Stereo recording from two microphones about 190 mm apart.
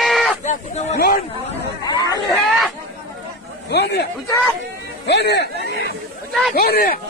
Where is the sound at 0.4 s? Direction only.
40° left (ahead or behind).